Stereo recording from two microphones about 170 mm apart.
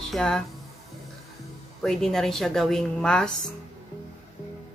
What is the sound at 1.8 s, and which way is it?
Speech, centre (ahead or behind).